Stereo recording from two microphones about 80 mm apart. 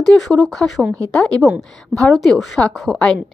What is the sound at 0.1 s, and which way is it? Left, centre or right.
Speech, centre.